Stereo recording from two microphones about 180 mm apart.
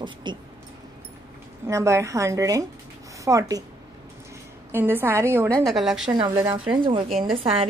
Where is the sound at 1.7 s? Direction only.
15° right (ahead or behind).